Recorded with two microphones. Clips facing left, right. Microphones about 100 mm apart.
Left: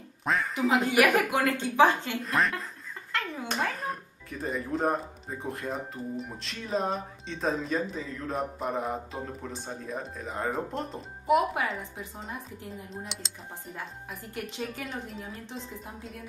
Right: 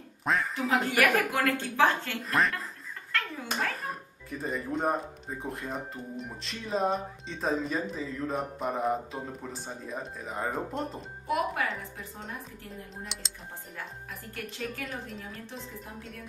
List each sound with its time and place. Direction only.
0.2 s speech: centre (ahead or behind)
0.7 s a woman's voice: 15° left (ahead or behind)
2.2 s speech: centre (ahead or behind)
3.1 s a sound: 20° left (ahead or behind)
3.8 s speech: centre (ahead or behind)
11.2 s a woman's voice: 20° left (ahead or behind)
12.9 s speech: centre (ahead or behind)
14.3 s a woman's voice: 20° left (ahead or behind)